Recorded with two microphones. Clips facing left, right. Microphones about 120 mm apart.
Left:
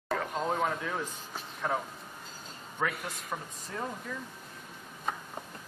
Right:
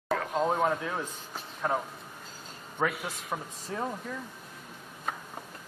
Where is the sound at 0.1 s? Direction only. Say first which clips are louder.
Right 3 dB; centre (ahead or behind).